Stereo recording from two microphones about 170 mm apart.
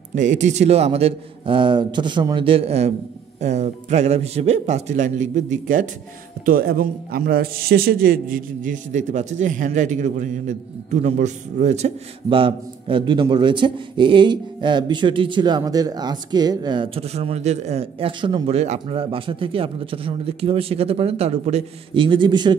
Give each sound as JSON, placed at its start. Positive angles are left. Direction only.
{"t": 0.1, "sound": "a man's voice", "side_deg": -45}
{"t": 6.4, "sound": "a man's voice", "side_deg": -60}